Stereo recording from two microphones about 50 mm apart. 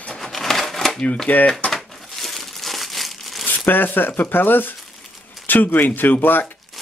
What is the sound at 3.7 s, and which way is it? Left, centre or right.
Speech, left.